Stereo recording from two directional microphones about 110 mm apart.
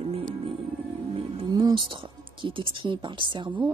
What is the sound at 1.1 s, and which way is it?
Music, 60° right (ahead or behind).